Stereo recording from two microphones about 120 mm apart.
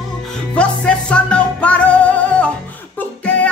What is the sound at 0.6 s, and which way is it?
Music, 10° left (ahead or behind).